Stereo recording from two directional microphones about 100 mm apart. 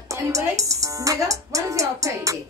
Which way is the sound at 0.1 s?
30° right (ahead or behind).